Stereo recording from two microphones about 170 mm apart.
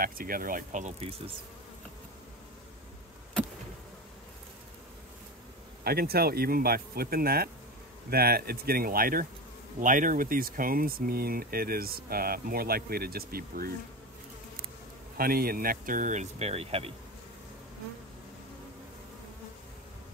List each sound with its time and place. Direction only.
0.0 s speech: 55° right (ahead or behind); by 1.3 s 35° right (ahead or behind)
5.9 s speech: 65° right (ahead or behind)
15.1 s speech: 60° right (ahead or behind); by 16.9 s 35° right (ahead or behind)